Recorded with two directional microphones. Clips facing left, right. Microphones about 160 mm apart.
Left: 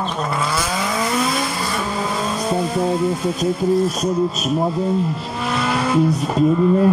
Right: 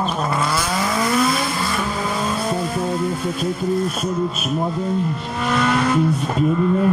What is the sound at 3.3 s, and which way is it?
Speech, 40° left (ahead or behind).